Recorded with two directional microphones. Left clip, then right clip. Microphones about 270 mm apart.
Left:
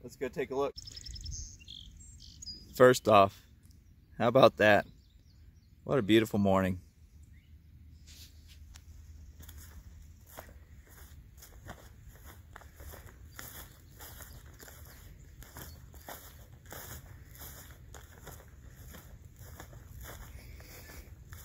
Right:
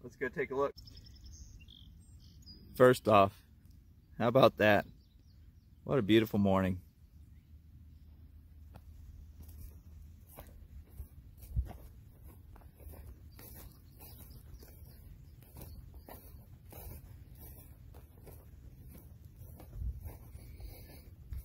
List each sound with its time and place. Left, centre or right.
0.1 s speech: centre
0.9 s chirp: left
2.7 s speech: centre
5.9 s speech: centre